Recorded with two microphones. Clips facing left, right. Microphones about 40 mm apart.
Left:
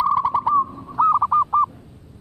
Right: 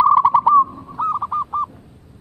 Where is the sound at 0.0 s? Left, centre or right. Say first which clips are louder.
Right 6 dB; right.